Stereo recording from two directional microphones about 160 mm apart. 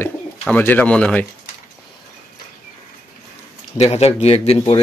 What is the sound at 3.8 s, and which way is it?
A man's voice, 40° left (ahead or behind).